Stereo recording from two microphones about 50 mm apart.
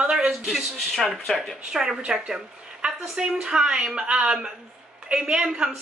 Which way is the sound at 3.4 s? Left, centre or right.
Centre.